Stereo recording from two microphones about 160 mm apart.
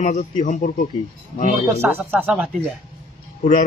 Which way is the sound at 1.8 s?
10° right (ahead or behind).